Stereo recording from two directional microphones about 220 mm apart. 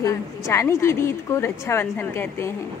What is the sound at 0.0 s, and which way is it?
A woman's voice, 15° left (ahead or behind).